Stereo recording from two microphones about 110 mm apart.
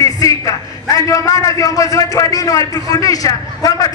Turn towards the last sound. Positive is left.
turn(degrees=35)  # may be behind; listen again after turning